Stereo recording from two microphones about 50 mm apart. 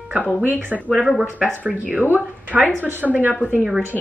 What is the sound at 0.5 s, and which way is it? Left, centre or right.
Speech, right.